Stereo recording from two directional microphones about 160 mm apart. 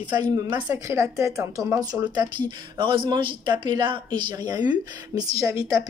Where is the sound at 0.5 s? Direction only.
20° right (ahead or behind).